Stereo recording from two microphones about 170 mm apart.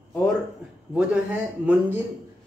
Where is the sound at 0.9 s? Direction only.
5° right (ahead or behind).